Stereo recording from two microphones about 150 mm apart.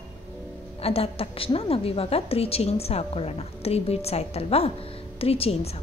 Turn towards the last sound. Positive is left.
turn(degrees=40)  # may be behind; listen again after turning